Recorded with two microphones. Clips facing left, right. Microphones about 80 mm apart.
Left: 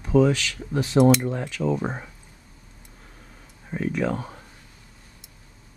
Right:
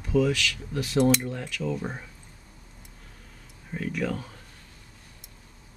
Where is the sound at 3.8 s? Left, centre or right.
Left.